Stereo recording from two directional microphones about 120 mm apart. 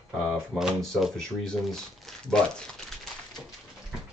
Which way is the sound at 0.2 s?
Centre (ahead or behind).